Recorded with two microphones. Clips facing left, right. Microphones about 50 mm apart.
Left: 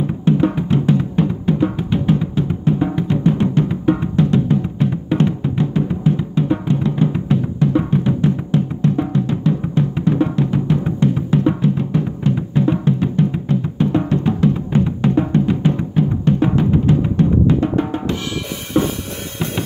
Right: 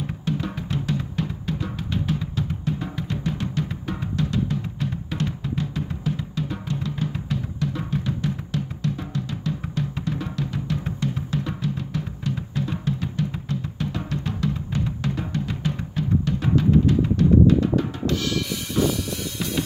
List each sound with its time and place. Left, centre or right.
0.2 s music: left